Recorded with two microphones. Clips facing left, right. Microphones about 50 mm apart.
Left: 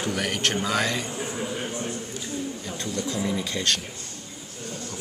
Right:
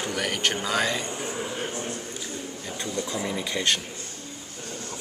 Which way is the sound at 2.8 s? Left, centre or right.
Centre.